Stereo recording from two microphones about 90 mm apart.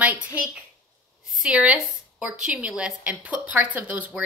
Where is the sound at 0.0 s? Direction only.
15° right (ahead or behind).